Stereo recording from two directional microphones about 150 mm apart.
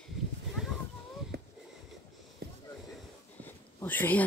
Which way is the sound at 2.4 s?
90° right.